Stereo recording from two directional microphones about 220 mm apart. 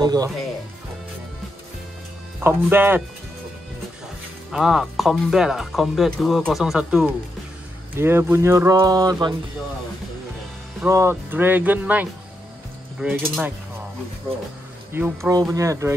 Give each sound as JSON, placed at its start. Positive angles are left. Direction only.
{"t": 0.0, "sound": "speech", "side_deg": -15}
{"t": 2.4, "sound": "speech", "side_deg": -10}
{"t": 4.5, "sound": "speech", "side_deg": 0}
{"t": 10.8, "sound": "speech", "side_deg": -10}
{"t": 14.9, "sound": "speech", "side_deg": -10}